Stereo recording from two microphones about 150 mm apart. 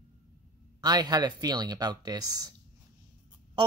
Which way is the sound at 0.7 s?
25° right (ahead or behind).